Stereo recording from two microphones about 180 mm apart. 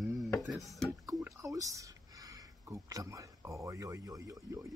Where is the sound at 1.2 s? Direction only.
15° right (ahead or behind).